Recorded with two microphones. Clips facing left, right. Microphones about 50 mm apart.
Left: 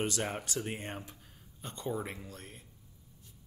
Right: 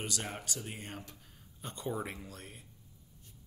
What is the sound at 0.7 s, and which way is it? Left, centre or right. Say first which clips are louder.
Speech: left 5 dB; left.